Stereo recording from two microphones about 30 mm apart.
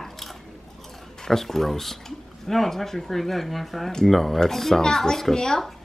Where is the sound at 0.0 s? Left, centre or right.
Centre.